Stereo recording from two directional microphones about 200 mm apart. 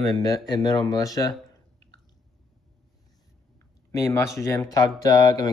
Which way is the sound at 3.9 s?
15° left (ahead or behind).